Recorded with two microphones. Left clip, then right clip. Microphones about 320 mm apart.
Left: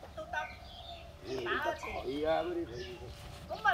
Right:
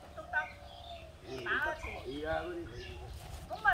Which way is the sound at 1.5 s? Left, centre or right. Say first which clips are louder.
Right 1 dB; left.